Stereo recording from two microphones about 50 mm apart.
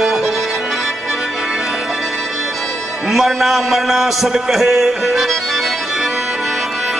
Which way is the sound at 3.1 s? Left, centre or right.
Centre.